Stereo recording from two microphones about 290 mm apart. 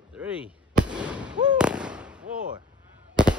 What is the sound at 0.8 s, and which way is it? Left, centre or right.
Fireworks, centre.